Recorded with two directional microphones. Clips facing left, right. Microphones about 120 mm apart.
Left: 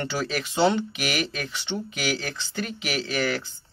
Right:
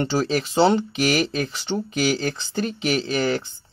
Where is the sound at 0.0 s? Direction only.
30° right (ahead or behind).